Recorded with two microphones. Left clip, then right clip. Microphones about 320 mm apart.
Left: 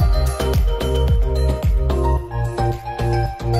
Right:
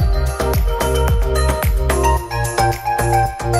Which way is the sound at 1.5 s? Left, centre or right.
Right.